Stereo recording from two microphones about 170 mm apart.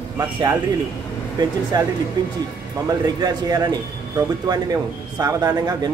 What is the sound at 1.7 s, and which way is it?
Speech, 20° right (ahead or behind).